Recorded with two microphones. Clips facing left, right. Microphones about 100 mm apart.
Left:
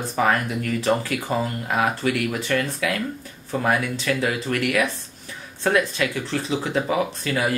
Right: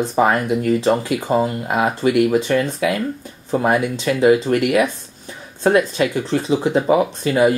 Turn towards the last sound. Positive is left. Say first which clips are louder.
# right 8 dB
turn(degrees=-30)  # may be behind; listen again after turning